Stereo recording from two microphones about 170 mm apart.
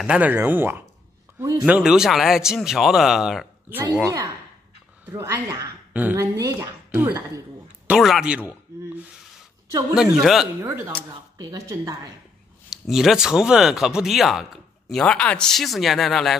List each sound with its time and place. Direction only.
0.0 s speech: 5° right (ahead or behind)
1.8 s speech: centre (ahead or behind)
5.1 s a man's voice: 20° right (ahead or behind)
9.7 s speech: 20° right (ahead or behind)
9.9 s speech: 5° right (ahead or behind)
10.6 s speech: 10° right (ahead or behind)
12.8 s speech: centre (ahead or behind)